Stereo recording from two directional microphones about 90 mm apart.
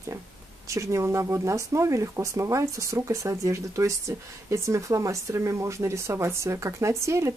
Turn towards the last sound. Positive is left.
turn(degrees=-30)  # may be behind; listen again after turning